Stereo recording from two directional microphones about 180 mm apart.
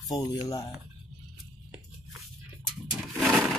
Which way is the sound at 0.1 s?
20° left (ahead or behind).